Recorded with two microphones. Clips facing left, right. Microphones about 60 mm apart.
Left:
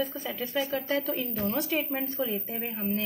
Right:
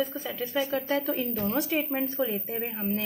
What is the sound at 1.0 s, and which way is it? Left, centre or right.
Speech, right.